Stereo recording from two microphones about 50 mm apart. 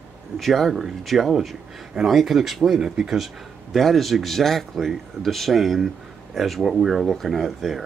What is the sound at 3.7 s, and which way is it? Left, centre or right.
Speech, centre.